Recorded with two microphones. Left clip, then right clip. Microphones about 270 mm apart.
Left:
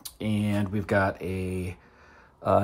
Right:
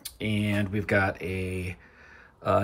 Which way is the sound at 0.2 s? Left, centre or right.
Centre.